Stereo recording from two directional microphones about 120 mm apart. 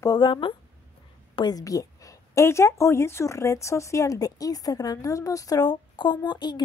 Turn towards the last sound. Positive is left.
turn(degrees=35)  # may be behind; listen again after turning